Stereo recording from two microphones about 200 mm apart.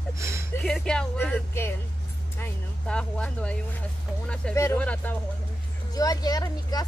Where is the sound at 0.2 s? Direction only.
15° right (ahead or behind).